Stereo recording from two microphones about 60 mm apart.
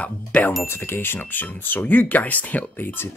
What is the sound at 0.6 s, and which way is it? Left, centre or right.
Speech, left.